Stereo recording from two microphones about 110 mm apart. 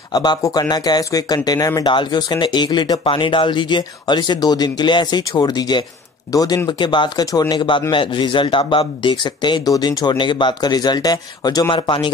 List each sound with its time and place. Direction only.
0.1 s speech: 40° left (ahead or behind)